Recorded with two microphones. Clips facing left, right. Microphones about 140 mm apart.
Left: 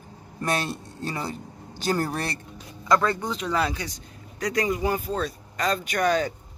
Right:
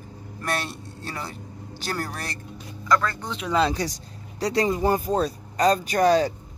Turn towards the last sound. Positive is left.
turn(degrees=-35)  # may be behind; listen again after turning